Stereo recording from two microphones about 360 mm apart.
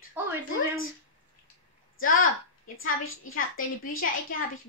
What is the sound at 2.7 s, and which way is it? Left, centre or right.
Speech, left.